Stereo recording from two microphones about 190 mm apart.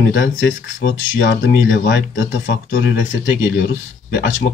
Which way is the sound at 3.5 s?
70° left (ahead or behind).